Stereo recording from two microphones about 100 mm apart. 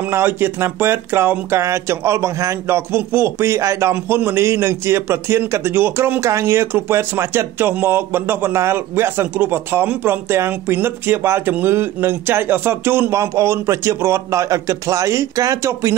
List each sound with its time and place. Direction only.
0.0 s a man's voice: 20° right (ahead or behind)